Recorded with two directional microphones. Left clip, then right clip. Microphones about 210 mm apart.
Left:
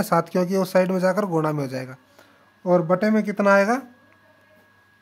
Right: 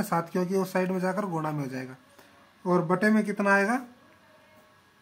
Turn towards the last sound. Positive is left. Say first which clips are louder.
# left 6 dB
turn(degrees=50)  # may be behind; listen again after turning